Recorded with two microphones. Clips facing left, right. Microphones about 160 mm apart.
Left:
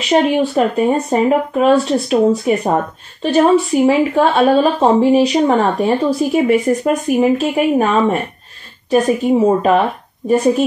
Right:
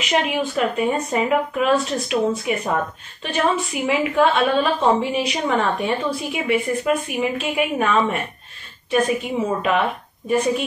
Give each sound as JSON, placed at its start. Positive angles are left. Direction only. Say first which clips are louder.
{"t": 0.1, "sound": "speech", "louder": "left 8 dB", "side_deg": 30}